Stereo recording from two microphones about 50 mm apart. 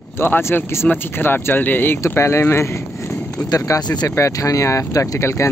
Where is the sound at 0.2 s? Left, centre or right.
Left.